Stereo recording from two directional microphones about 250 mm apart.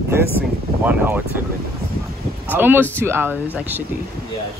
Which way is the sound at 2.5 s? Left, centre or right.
Centre.